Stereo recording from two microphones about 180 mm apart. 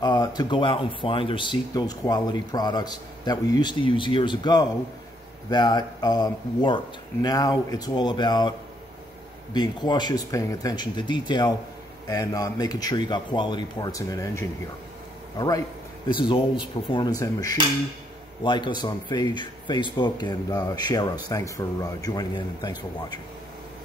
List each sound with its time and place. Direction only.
0.0 s a man's voice: 25° left (ahead or behind)